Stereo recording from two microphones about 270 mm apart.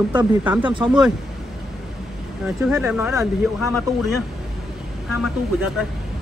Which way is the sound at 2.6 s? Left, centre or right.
Centre.